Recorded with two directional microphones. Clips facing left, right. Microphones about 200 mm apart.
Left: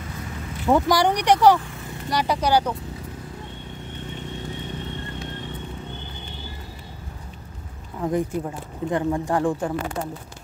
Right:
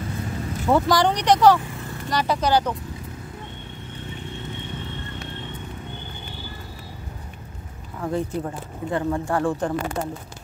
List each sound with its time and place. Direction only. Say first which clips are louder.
0.7 s speech: even; 15° left (ahead or behind)
8.0 s speech: left 2 dB; 15° left (ahead or behind)